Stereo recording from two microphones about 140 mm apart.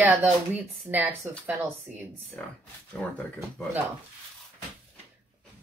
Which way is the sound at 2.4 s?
5° left (ahead or behind).